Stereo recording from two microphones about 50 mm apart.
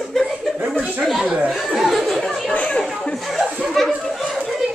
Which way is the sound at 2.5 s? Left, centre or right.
Left.